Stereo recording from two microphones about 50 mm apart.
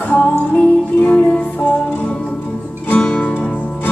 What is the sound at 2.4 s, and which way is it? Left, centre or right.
Music, left.